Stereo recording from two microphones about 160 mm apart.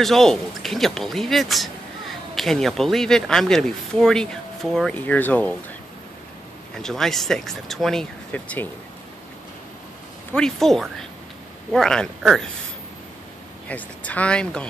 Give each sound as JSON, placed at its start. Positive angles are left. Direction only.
{"t": 0.0, "sound": "speech", "side_deg": 0}
{"t": 6.8, "sound": "speech", "side_deg": 5}
{"t": 10.3, "sound": "speech", "side_deg": 5}
{"t": 13.7, "sound": "speech", "side_deg": 10}